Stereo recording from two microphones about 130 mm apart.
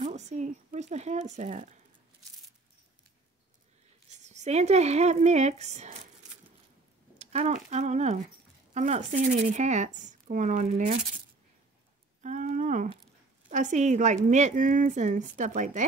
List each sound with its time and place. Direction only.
0.0 s speech: 60° right (ahead or behind)
4.1 s speech: 65° right (ahead or behind)
7.2 s speech: 60° right (ahead or behind)
12.2 s a woman's voice: 65° right (ahead or behind)